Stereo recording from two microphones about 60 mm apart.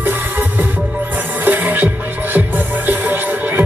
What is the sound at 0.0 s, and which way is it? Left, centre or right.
Music, right.